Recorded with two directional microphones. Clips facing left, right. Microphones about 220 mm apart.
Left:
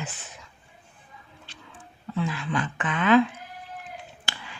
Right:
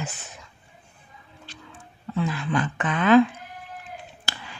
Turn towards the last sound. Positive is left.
turn(degrees=-40)  # may be behind; listen again after turning